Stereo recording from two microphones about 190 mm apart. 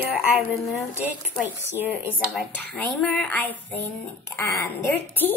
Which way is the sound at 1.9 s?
5° left (ahead or behind).